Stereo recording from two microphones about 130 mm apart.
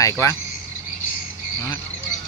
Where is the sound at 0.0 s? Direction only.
25° left (ahead or behind).